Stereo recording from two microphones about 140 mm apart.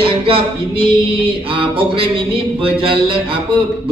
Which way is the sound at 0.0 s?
40° right (ahead or behind).